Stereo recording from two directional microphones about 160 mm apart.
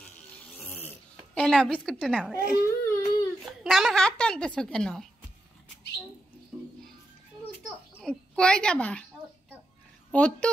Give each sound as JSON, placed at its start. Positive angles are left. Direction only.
{"t": 0.7, "sound": "dog", "side_deg": 10}
{"t": 1.4, "sound": "a woman's voice", "side_deg": 5}
{"t": 2.9, "sound": "a sound", "side_deg": 25}
{"t": 3.6, "sound": "a woman's voice", "side_deg": 0}
{"t": 8.0, "sound": "a woman's voice", "side_deg": 5}
{"t": 10.1, "sound": "a woman's voice", "side_deg": 10}